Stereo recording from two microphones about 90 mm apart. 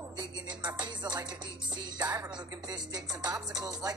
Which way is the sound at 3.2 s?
45° right (ahead or behind).